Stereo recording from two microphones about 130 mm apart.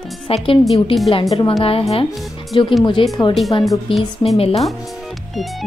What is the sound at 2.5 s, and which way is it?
Speech, 40° left (ahead or behind).